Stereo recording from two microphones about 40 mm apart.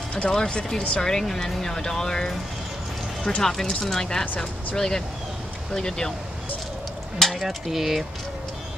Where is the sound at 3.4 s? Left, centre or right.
Centre.